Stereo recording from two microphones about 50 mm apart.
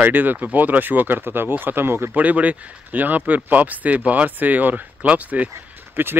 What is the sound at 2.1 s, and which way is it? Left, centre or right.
Speech, right.